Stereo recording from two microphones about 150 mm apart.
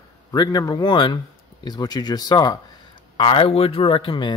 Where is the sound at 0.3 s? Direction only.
25° left (ahead or behind).